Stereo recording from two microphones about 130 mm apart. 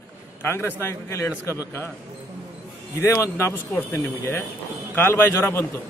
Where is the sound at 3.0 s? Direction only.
20° left (ahead or behind).